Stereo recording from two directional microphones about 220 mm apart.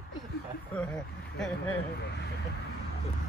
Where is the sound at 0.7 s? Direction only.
5° left (ahead or behind).